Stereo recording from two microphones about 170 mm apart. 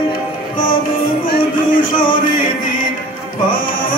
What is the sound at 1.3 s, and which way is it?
Music, 55° left (ahead or behind).